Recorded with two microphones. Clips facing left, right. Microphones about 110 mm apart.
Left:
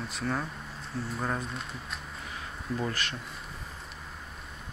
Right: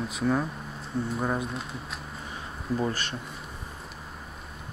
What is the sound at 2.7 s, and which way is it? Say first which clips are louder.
Speech: right 5 dB; 30° right (ahead or behind).